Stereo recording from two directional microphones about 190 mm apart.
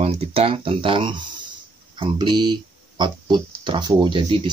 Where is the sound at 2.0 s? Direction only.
25° right (ahead or behind).